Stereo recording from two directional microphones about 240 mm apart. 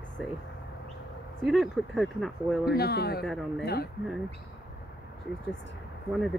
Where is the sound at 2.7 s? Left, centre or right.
Left.